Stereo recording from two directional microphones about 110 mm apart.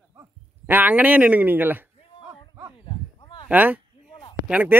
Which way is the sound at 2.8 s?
50° left (ahead or behind).